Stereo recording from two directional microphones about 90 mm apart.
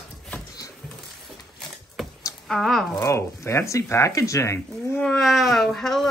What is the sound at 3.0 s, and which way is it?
Speech, 30° left (ahead or behind).